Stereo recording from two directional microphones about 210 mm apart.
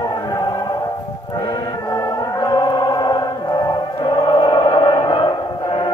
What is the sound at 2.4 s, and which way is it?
Music, 20° left (ahead or behind).